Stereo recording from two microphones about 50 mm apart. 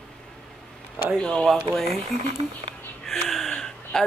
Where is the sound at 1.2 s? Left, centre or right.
Centre.